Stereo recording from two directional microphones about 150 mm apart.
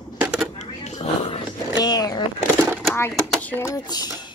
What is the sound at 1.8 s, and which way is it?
Vehicle, 25° left (ahead or behind).